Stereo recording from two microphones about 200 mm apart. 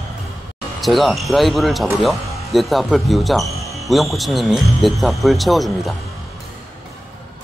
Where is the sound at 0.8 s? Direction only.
Centre (ahead or behind).